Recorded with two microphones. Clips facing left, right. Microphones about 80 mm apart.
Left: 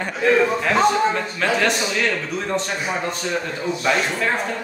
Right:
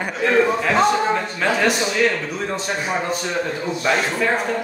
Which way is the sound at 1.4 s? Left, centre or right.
Centre.